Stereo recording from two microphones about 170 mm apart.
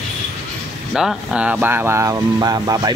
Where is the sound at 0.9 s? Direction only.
5° right (ahead or behind).